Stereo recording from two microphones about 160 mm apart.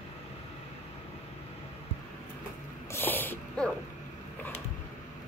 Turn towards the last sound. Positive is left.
turn(degrees=10)  # may be behind; listen again after turning